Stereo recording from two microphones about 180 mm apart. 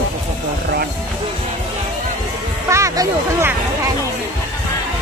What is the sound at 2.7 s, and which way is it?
Music, 15° right (ahead or behind).